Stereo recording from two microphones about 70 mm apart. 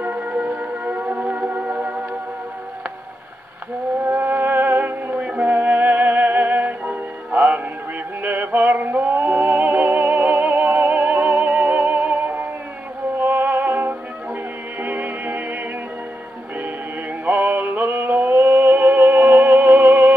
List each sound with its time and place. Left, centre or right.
0.0 s music: right
4.0 s music: right
17.2 s music: right